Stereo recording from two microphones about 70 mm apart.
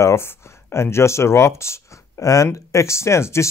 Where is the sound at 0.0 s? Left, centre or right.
Left.